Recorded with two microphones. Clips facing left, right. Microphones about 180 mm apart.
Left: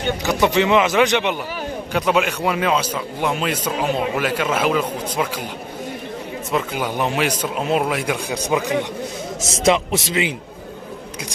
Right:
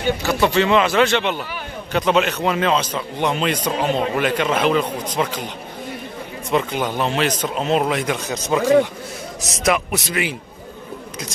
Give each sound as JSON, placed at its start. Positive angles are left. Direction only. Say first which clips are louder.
{"t": 0.2, "sound": "a man's voice", "louder": "left 2 dB", "side_deg": 15}
{"t": 6.5, "sound": "a man's voice", "louder": "right 2 dB", "side_deg": 5}
{"t": 9.4, "sound": "a man's voice", "louder": "left 2 dB", "side_deg": 25}